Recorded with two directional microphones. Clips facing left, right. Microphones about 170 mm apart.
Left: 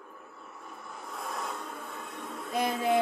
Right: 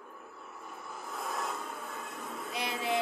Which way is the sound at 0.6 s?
Centre (ahead or behind).